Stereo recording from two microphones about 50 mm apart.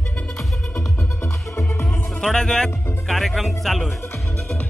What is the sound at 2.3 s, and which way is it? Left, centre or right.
Speech, centre.